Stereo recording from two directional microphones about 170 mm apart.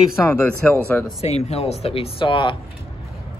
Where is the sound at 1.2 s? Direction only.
40° left (ahead or behind).